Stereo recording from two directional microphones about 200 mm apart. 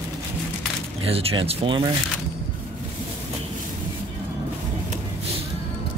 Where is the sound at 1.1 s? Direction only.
30° right (ahead or behind).